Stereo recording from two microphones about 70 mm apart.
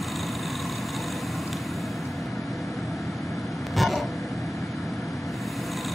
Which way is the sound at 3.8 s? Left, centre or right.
Centre.